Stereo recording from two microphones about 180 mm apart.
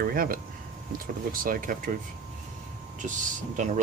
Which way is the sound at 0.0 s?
55° right (ahead or behind).